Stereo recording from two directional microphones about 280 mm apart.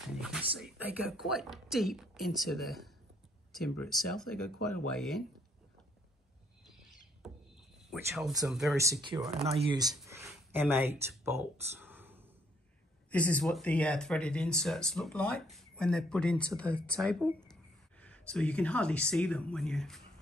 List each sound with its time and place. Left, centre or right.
0.0 s speech: centre
7.9 s speech: centre
9.0 s speech: centre
13.1 s speech: centre